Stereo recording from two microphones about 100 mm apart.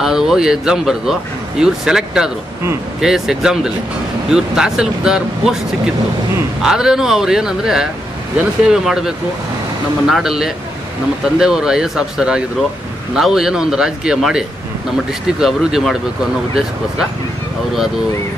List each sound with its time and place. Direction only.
0.0 s speech: 5° right (ahead or behind)
6.6 s speech: 5° right (ahead or behind)